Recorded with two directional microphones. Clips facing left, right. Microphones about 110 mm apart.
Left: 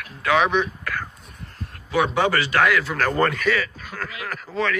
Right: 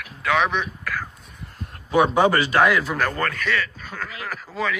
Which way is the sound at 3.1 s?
25° left (ahead or behind).